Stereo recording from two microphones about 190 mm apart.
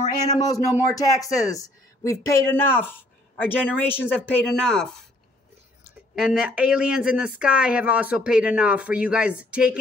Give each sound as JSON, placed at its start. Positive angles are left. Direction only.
{"t": 0.4, "sound": "speech", "side_deg": 15}
{"t": 6.1, "sound": "speech", "side_deg": -5}